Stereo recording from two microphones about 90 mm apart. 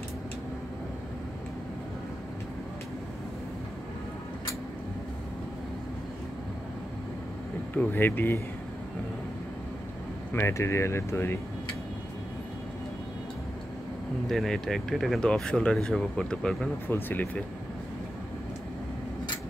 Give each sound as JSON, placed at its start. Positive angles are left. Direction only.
{"t": 7.7, "sound": "speech", "side_deg": 20}
{"t": 10.3, "sound": "speech", "side_deg": 30}
{"t": 14.2, "sound": "speech", "side_deg": 5}
{"t": 16.8, "sound": "speech", "side_deg": 25}